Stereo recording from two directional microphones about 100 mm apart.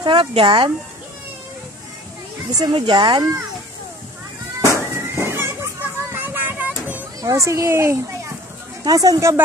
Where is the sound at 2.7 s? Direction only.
60° right (ahead or behind).